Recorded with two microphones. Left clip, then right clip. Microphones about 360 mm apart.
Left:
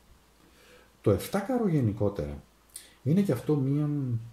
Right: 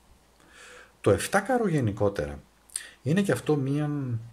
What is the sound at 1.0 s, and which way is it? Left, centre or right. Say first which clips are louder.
Speech: right 4 dB; right.